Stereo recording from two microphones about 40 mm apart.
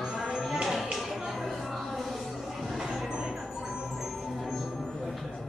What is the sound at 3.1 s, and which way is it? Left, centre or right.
Music, right.